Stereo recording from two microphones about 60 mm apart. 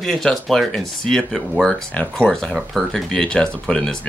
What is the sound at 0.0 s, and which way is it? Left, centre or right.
Speech, centre.